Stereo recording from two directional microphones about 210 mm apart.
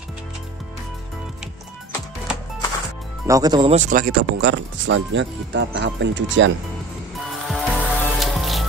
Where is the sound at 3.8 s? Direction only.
40° right (ahead or behind).